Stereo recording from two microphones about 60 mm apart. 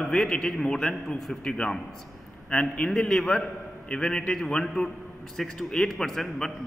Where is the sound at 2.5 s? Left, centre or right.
Centre.